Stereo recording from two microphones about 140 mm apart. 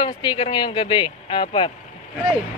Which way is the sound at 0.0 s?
35° left (ahead or behind).